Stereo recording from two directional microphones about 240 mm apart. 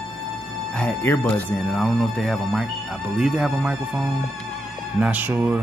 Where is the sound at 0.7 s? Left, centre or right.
Centre.